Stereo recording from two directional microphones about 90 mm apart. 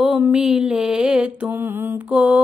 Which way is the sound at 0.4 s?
5° right (ahead or behind).